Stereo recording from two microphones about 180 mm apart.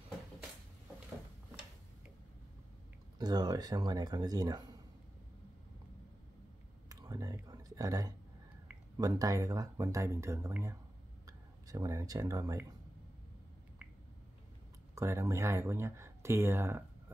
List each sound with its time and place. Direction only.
3.2 s speech: 20° right (ahead or behind)
6.9 s a sound: 20° right (ahead or behind)
8.9 s speech: 20° right (ahead or behind)
15.0 s speech: 15° right (ahead or behind)